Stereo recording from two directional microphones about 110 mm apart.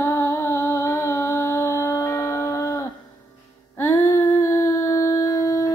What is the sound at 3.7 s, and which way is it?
Humming, 20° left (ahead or behind).